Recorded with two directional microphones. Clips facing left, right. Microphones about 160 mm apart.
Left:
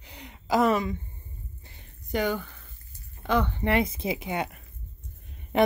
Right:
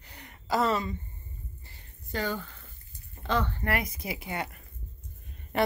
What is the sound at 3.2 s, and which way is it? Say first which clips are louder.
A woman's voice: left 4 dB; 15° left (ahead or behind).